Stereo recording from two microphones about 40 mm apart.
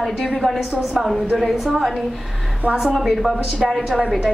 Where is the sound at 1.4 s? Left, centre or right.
Centre.